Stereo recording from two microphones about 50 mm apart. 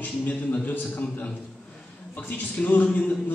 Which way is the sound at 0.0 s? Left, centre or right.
Left.